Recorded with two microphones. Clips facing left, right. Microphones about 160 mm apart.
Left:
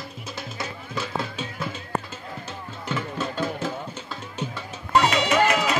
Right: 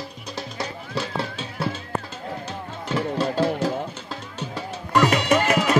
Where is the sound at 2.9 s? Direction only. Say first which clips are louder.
Right 5 dB; 35° right (ahead or behind).